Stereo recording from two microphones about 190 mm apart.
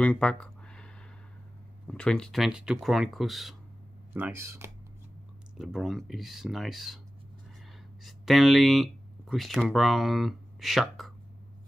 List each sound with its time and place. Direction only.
0.0 s a sound: 5° left (ahead or behind)
1.9 s speech: 5° left (ahead or behind)
4.1 s speech: 10° right (ahead or behind)
5.6 s speech: centre (ahead or behind)
8.0 s speech: centre (ahead or behind)